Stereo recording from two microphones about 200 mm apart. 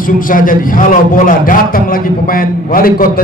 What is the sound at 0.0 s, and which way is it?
A man's voice, 45° left (ahead or behind).